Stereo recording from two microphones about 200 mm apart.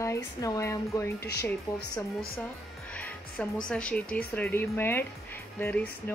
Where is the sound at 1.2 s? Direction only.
55° left (ahead or behind).